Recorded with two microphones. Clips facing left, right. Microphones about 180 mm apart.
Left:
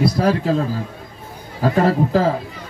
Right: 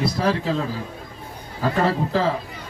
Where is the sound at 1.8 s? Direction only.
45° left (ahead or behind).